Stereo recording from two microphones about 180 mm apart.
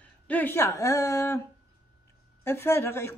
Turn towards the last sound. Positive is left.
turn(degrees=15)  # may be behind; listen again after turning